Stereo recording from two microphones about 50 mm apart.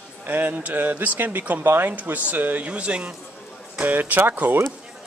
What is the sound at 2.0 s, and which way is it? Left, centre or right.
Speech, right.